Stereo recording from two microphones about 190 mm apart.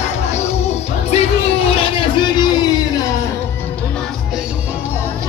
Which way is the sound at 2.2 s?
25° left (ahead or behind).